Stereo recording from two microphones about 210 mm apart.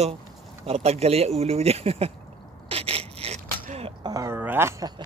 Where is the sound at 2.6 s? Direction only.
25° right (ahead or behind).